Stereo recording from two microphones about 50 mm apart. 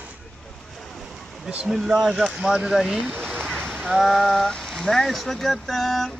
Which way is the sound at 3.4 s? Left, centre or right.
Centre.